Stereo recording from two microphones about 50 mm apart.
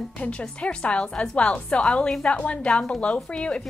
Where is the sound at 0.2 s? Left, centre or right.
Left.